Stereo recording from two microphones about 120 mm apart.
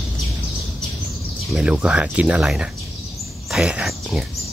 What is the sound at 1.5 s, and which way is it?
Speech, 5° right (ahead or behind).